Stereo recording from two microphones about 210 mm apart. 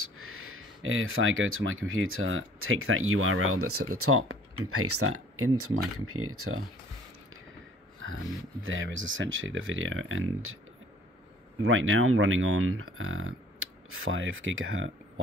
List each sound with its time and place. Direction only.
0.0 s speech: 90° right
8.6 s speech: 65° right (ahead or behind)
11.6 s speech: 70° right (ahead or behind)